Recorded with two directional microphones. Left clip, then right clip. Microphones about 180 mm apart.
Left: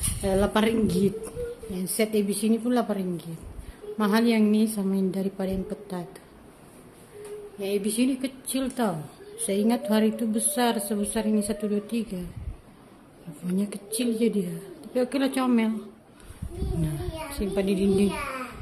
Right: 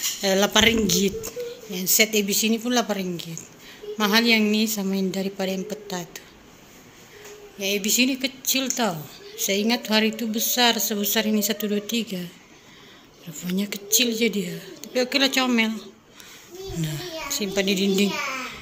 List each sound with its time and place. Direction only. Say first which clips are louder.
0.2 s a woman's voice: right 5 dB; centre (ahead or behind)
7.5 s a woman's voice: right 5 dB; 5° left (ahead or behind)
11.0 s a woman's voice: right 4 dB; centre (ahead or behind)
13.5 s a woman's voice: right 6 dB; 5° left (ahead or behind)
16.8 s a child's voice: right 5 dB; 10° left (ahead or behind)